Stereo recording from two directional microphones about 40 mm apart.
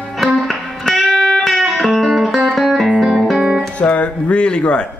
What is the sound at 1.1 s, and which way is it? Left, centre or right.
Music, centre.